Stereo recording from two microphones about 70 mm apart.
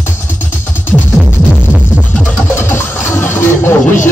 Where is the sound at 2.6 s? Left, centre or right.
Left.